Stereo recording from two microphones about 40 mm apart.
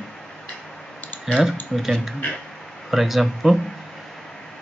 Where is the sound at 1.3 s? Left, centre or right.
Centre.